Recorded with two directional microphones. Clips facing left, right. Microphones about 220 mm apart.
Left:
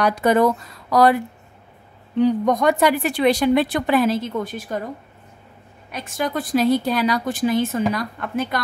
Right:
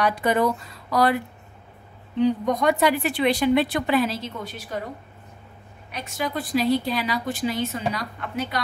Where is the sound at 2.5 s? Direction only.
45° left (ahead or behind).